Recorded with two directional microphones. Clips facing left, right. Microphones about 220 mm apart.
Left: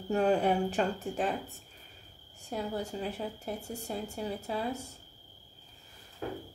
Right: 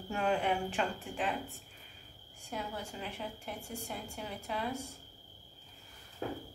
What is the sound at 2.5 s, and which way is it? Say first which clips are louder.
A woman's voice: left 6 dB; 40° left (ahead or behind).